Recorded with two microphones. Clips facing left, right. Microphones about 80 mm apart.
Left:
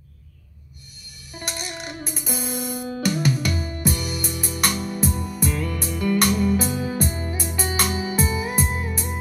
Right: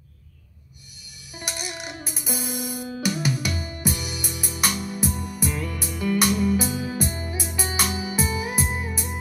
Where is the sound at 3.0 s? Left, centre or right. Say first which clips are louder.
Left 3 dB; centre.